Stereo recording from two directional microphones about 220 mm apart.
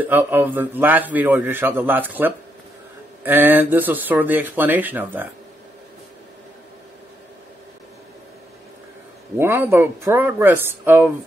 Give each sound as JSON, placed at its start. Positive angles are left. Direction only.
{"t": 0.0, "sound": "a man's voice", "side_deg": -10}
{"t": 9.4, "sound": "a man's voice", "side_deg": -10}